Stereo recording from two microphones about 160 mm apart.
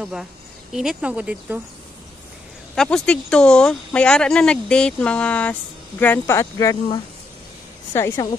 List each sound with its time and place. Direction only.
0.0 s speech: centre (ahead or behind)
2.7 s speech: 5° left (ahead or behind)